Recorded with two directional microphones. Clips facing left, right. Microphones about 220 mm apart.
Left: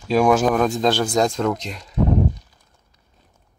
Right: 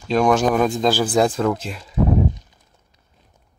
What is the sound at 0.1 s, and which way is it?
Speech, 5° left (ahead or behind).